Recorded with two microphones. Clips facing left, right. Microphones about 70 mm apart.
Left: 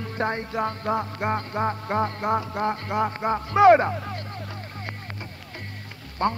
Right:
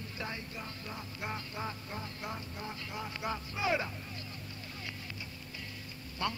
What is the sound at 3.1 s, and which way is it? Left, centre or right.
Speech, left.